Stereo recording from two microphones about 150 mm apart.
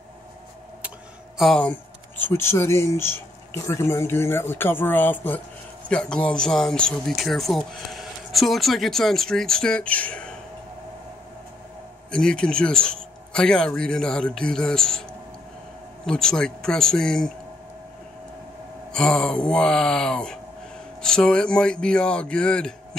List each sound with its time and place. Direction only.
1.4 s speech: 5° left (ahead or behind)
12.1 s speech: 5° left (ahead or behind)
16.1 s speech: 5° left (ahead or behind)
18.9 s speech: 5° left (ahead or behind)